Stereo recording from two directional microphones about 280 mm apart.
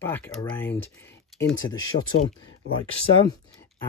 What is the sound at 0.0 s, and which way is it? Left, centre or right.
Speech, centre.